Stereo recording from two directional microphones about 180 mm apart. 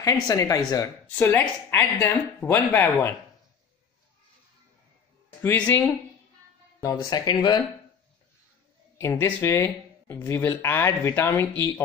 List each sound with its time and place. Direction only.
0.0 s speech: 20° left (ahead or behind)
5.4 s speech: 10° left (ahead or behind)
6.8 s speech: 20° left (ahead or behind)
8.9 s speech: 15° left (ahead or behind)